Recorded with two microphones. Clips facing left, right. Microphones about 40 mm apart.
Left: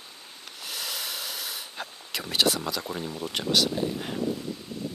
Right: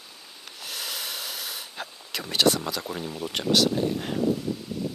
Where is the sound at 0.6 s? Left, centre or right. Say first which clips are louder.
Even; centre.